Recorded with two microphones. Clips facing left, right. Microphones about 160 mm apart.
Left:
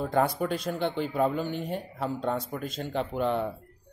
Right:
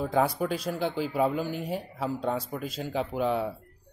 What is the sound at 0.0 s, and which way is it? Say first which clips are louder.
Speech: even; centre (ahead or behind).